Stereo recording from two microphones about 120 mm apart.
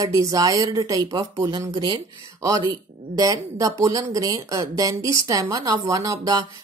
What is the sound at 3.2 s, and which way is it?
Speech, 30° right (ahead or behind).